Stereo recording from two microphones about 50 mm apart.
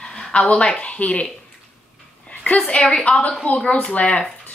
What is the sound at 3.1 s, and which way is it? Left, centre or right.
Speech, left.